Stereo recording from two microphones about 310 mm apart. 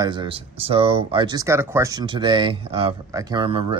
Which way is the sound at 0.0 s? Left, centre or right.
Centre.